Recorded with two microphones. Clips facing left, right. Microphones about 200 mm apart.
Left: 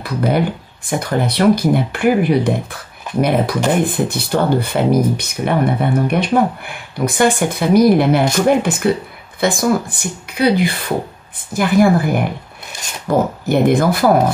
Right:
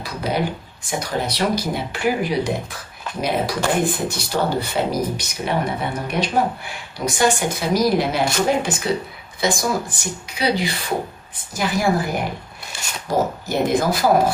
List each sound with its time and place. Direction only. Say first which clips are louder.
0.0 s speech: left 6 dB; 55° left (ahead or behind)
12.7 s a sound: even; 15° left (ahead or behind)
13.5 s speech: left 7 dB; 55° left (ahead or behind)